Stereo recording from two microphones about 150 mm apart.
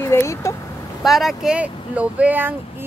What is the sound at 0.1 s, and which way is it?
Speech, 20° left (ahead or behind).